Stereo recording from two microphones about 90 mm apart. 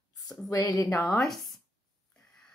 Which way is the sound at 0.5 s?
40° left (ahead or behind).